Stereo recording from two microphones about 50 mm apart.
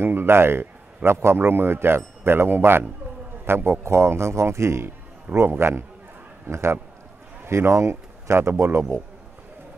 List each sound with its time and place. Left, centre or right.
0.0 s a man's voice: right
3.8 s speech: right
5.3 s a man's voice: right